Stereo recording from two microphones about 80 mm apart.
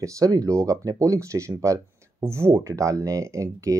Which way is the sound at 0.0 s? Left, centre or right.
Right.